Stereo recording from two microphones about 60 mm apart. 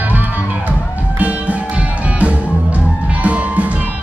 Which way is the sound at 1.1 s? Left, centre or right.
Right.